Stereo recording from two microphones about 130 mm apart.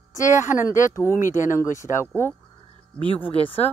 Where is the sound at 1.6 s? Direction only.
20° left (ahead or behind).